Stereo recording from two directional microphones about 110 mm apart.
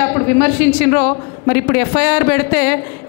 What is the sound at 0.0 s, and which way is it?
Speech, 25° left (ahead or behind).